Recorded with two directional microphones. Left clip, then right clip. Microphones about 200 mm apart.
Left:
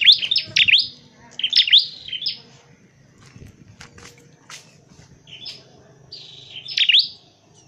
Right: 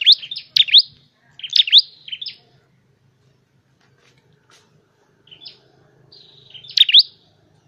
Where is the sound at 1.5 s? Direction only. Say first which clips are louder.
Right 1 dB; 15° right (ahead or behind).